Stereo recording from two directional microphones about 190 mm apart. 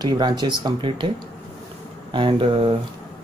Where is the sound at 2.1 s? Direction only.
25° right (ahead or behind).